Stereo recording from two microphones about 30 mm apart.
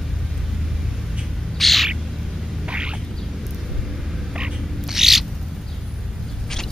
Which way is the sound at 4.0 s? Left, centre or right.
Centre.